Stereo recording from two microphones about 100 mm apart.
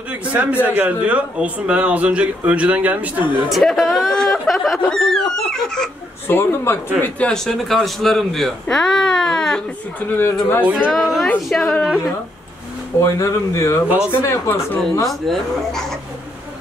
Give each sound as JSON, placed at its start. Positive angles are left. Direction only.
{"t": 0.1, "sound": "speech", "side_deg": -15}
{"t": 3.4, "sound": "speech", "side_deg": 0}
{"t": 6.2, "sound": "speech", "side_deg": 20}
{"t": 7.0, "sound": "speech", "side_deg": 10}
{"t": 9.9, "sound": "speech", "side_deg": 20}
{"t": 10.9, "sound": "speech", "side_deg": 0}
{"t": 13.0, "sound": "speech", "side_deg": 30}
{"t": 15.0, "sound": "speech", "side_deg": 5}